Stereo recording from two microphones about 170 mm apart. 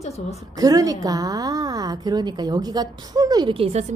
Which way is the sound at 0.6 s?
20° right (ahead or behind).